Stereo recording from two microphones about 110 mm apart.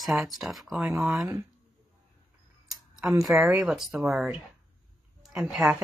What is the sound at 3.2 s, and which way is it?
Speech, 30° right (ahead or behind).